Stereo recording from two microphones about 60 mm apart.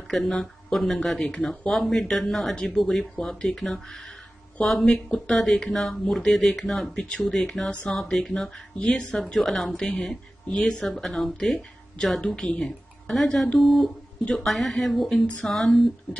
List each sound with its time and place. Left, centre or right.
0.1 s speech: centre
8.7 s speech: centre
9.2 s speech: centre
15.2 s speech: left
15.5 s speech: centre